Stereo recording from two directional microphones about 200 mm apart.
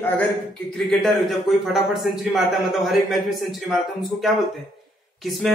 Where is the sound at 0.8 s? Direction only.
Centre (ahead or behind).